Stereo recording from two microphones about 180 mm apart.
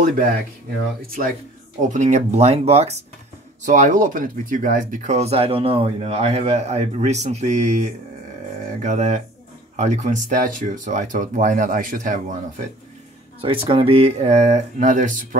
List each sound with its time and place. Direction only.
1.8 s speech: 45° right (ahead or behind)
13.4 s speech: 30° right (ahead or behind)